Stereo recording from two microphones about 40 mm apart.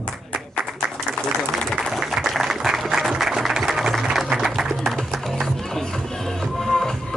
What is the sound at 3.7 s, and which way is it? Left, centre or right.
Music, centre.